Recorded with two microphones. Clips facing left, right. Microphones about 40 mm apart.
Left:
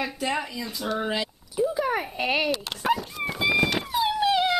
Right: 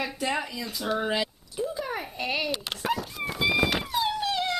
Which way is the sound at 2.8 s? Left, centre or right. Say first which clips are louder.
Left 4 dB; centre.